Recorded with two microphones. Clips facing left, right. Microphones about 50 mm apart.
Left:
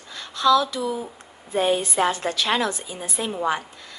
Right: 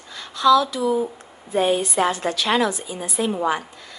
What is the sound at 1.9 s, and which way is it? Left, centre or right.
A woman's voice, right.